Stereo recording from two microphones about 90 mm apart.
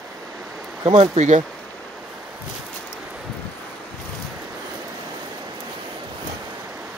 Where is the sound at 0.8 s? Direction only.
55° right (ahead or behind).